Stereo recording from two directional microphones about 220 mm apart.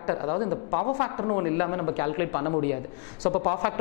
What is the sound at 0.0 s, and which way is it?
Speech, 20° left (ahead or behind).